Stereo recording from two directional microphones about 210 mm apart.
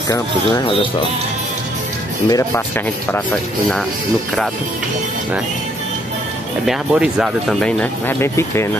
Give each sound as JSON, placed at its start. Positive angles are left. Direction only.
{"t": 2.2, "sound": "speech", "side_deg": 15}
{"t": 6.6, "sound": "speech", "side_deg": -5}